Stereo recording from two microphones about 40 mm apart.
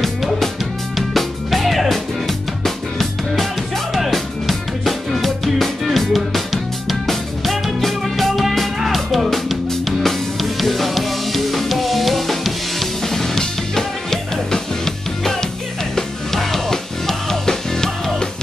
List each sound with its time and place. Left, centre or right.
0.0 s music: centre